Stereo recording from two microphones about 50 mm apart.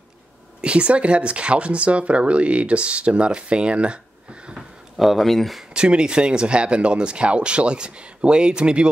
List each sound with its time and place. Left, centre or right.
0.6 s speech: right
4.9 s speech: centre
5.6 s speech: centre